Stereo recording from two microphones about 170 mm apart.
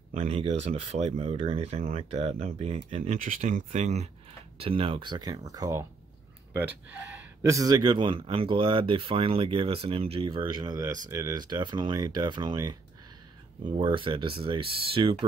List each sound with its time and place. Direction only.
0.1 s speech: 40° right (ahead or behind)
3.2 s speech: 50° right (ahead or behind); by 15.1 s 30° right (ahead or behind)